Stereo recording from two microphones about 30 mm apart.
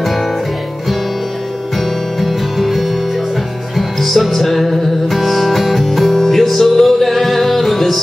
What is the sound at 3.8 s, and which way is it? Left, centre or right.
Music, centre.